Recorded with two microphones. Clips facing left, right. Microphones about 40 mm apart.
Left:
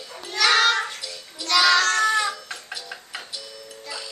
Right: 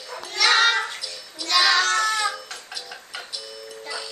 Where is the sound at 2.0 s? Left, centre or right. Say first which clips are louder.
Left 2 dB; centre.